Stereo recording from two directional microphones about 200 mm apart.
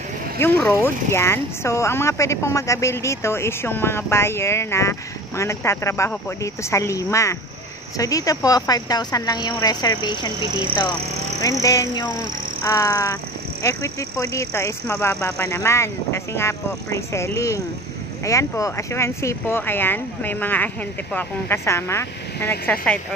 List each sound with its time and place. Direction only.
0.4 s a woman's voice: 10° left (ahead or behind)
11.4 s speech: 15° left (ahead or behind)